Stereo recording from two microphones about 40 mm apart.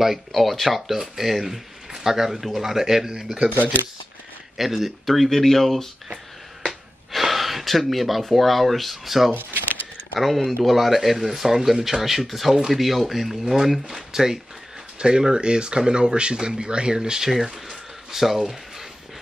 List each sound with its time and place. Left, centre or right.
0.3 s speech: centre
4.6 s speech: centre
6.6 s gasp: centre
9.3 s speech: right
10.1 s speech: centre
15.0 s speech: right
17.3 s a sound: centre